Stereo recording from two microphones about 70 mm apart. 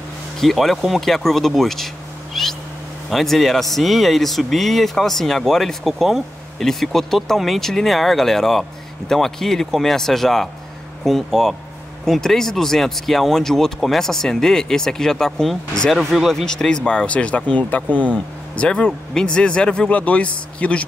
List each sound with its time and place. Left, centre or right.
0.4 s speech: centre
2.3 s cat: centre
3.1 s speech: centre